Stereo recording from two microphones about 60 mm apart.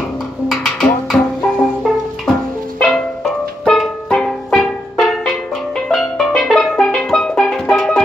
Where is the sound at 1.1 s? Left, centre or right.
Centre.